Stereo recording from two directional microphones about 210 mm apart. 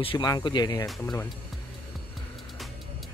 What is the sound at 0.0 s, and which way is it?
Music, 20° left (ahead or behind).